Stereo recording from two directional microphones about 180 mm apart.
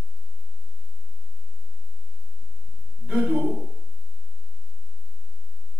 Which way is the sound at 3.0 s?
5° right (ahead or behind).